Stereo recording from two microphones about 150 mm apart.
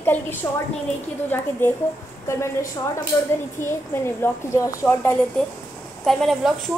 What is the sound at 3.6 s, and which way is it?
A woman's voice, 15° left (ahead or behind).